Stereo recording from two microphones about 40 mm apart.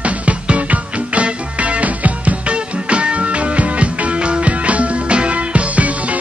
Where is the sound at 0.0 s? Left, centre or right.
Right.